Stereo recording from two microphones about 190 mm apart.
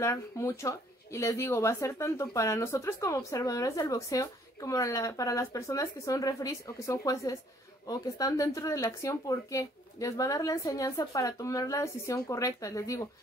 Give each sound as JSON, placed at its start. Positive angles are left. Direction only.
{"t": 0.0, "sound": "speech", "side_deg": 15}